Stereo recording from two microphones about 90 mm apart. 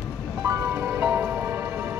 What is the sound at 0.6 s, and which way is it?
Music, 25° right (ahead or behind).